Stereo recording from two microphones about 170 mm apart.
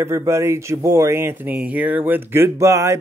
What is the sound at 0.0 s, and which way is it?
Speech, 15° right (ahead or behind).